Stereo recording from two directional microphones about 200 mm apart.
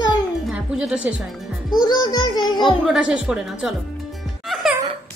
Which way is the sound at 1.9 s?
20° left (ahead or behind).